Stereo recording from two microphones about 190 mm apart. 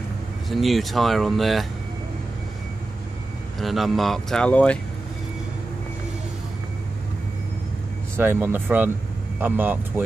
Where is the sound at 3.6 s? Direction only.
Centre (ahead or behind).